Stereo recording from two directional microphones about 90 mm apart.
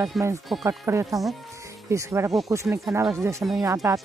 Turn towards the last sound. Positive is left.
turn(degrees=-40)  # may be behind; listen again after turning